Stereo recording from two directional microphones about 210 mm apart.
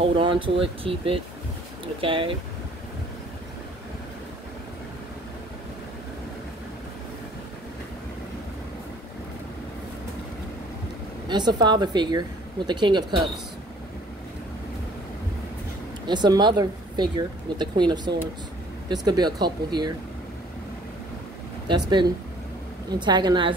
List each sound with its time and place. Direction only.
0.0 s speech: 25° right (ahead or behind)
11.2 s speech: 20° right (ahead or behind)
16.1 s speech: 20° right (ahead or behind)
21.6 s speech: 20° right (ahead or behind)